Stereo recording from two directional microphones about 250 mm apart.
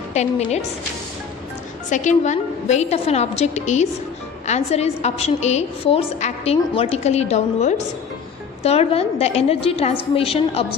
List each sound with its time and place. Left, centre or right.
0.1 s a woman's voice: left
1.9 s a woman's voice: left